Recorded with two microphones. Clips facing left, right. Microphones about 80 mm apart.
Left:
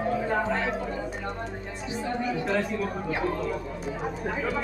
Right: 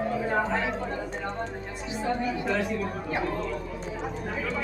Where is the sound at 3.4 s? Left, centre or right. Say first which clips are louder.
Left 1 dB; centre.